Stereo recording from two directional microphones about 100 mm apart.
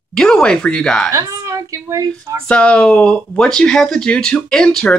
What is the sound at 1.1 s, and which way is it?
A woman's voice, 35° right (ahead or behind).